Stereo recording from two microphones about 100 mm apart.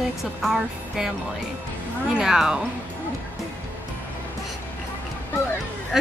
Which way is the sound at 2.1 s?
5° right (ahead or behind).